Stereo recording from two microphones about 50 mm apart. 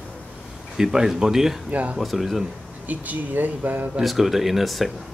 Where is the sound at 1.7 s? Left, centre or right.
Right.